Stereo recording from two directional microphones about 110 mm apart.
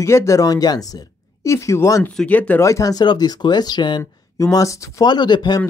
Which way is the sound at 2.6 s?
30° left (ahead or behind).